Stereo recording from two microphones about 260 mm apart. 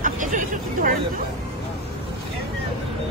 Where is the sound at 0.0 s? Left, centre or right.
Right.